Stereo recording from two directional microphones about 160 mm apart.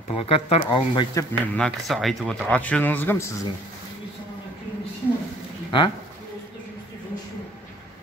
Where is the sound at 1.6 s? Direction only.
Centre (ahead or behind).